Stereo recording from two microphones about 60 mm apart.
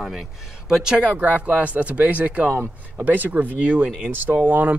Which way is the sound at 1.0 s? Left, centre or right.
Right.